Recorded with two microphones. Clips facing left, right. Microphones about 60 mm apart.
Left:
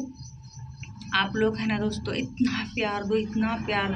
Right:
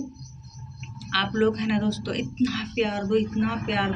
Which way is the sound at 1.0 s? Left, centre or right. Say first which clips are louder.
Right 1 dB; left.